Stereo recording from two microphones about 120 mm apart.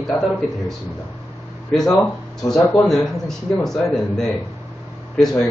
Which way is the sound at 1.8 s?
30° left (ahead or behind).